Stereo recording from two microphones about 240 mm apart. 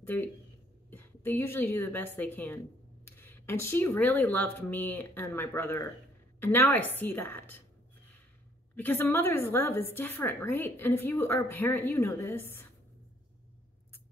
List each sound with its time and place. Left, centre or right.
0.0 s a woman's voice: centre
8.7 s a woman's voice: centre